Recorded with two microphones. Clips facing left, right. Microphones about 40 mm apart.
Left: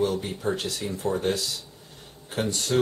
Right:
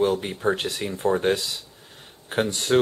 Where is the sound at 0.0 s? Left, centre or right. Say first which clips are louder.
Right 4 dB; right.